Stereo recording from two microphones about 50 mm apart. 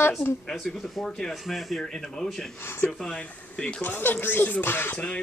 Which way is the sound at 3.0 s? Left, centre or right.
Centre.